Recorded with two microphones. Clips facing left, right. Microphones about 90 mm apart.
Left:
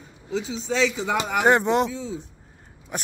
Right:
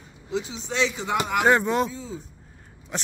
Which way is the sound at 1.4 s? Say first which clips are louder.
Left 2 dB; 25° left (ahead or behind).